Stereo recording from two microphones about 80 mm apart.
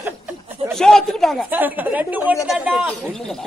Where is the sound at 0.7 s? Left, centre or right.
Centre.